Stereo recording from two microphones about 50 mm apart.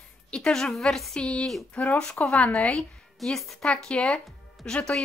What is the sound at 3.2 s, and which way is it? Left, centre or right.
Speech, centre.